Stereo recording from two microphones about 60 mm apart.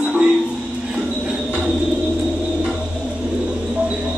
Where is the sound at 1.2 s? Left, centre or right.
Centre.